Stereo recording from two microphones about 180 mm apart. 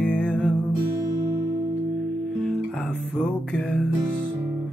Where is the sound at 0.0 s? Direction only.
5° left (ahead or behind).